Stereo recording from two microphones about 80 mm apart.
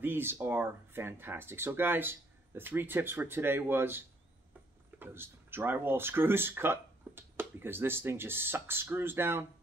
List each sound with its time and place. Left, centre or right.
0.0 s speech: right